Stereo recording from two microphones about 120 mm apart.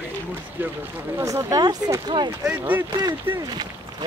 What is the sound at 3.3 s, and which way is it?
Speech, 15° right (ahead or behind).